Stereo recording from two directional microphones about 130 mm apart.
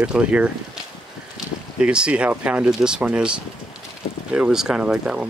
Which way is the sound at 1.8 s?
5° right (ahead or behind).